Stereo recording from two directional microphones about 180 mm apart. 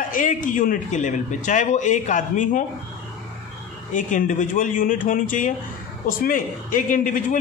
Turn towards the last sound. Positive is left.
turn(degrees=50)  # may be behind; listen again after turning